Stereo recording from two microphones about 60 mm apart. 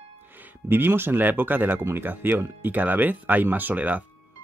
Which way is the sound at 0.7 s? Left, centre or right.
Right.